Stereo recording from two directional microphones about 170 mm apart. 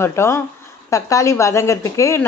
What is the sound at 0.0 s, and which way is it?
Speech, 15° left (ahead or behind).